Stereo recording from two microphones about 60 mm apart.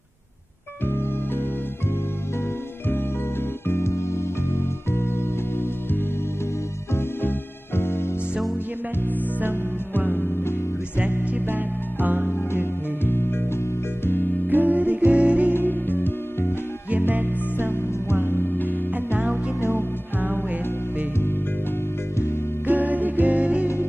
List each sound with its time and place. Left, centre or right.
0.8 s music: left
3.6 s music: left
11.0 s music: right
13.0 s music: left
14.5 s music: right
15.5 s music: left
17.1 s music: right
18.2 s music: left
19.1 s music: right
19.6 s music: left
22.7 s music: right